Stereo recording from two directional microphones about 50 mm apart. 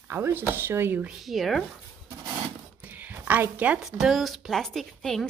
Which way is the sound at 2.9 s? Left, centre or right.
Right.